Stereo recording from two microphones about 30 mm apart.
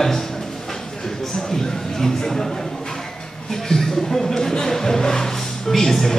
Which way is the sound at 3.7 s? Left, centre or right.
Centre.